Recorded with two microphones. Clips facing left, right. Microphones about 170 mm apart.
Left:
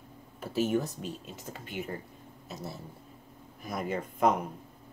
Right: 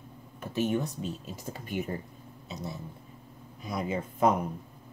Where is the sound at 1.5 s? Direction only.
45° right (ahead or behind).